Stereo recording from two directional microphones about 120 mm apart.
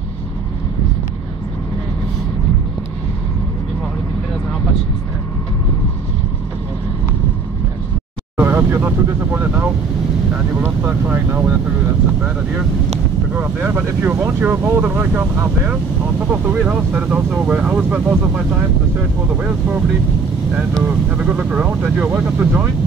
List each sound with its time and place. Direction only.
8.4 s speech: 20° right (ahead or behind)
13.4 s speech: 15° right (ahead or behind)
19.3 s speech: 10° right (ahead or behind)